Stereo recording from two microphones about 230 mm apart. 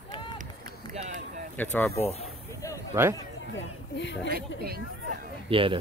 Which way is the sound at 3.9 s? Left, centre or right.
Left.